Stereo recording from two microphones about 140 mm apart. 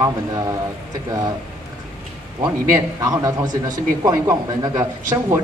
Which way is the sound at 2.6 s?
20° right (ahead or behind).